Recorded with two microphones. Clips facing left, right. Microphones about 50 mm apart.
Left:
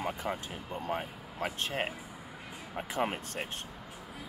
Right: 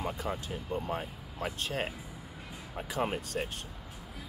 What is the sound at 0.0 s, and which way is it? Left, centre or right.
Speech, left.